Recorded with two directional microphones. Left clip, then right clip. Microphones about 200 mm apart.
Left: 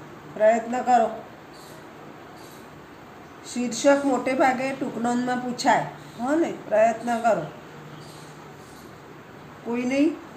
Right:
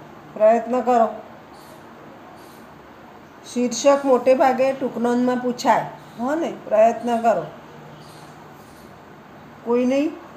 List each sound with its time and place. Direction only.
0.4 s a woman's voice: 20° right (ahead or behind)
3.5 s a woman's voice: 15° right (ahead or behind)
9.8 s a woman's voice: 15° right (ahead or behind)